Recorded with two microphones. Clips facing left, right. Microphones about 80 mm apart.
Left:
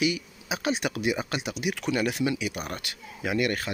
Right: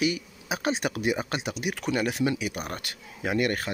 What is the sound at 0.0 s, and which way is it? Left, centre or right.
Speech, right.